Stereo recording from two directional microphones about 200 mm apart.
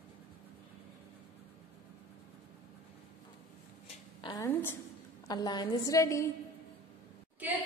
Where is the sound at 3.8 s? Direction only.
25° left (ahead or behind).